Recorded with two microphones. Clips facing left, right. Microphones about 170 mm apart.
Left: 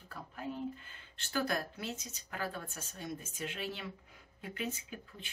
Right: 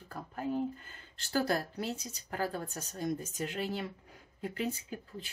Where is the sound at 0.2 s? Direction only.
45° right (ahead or behind).